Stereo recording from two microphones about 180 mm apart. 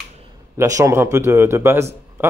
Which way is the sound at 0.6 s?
20° right (ahead or behind).